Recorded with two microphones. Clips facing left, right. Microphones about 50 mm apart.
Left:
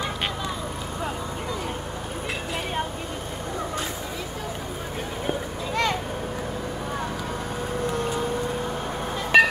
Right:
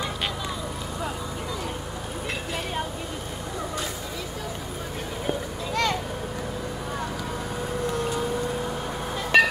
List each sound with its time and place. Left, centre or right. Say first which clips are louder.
5.2 s a sound: even; centre
7.9 s vehicle: even; left
9.3 s music: left 2 dB; left